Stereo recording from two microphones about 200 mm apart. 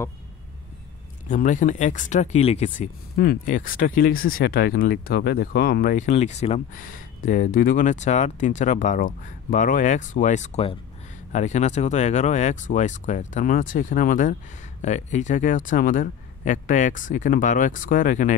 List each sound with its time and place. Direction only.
1.3 s a man's voice: 40° left (ahead or behind)
3.2 s a man's voice: 45° left (ahead or behind)